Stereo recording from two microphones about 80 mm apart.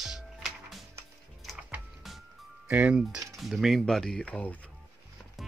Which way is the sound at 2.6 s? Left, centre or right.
Centre.